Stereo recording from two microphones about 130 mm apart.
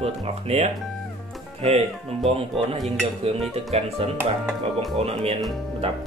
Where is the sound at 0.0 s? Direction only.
50° right (ahead or behind).